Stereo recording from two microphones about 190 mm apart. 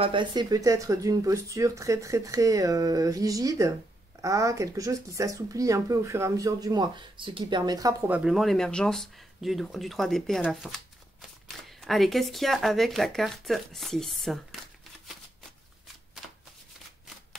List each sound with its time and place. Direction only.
0.0 s speech: 25° right (ahead or behind)
8.1 s speech: 5° right (ahead or behind)